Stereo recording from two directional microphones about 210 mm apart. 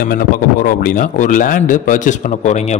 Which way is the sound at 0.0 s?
45° left (ahead or behind).